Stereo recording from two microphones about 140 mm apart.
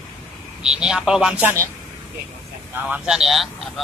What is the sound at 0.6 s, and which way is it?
Speech, 5° right (ahead or behind).